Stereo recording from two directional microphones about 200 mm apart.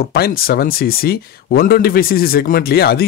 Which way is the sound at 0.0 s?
50° left (ahead or behind).